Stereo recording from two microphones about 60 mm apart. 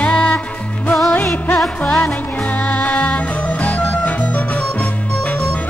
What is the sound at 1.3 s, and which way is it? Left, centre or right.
Music, left.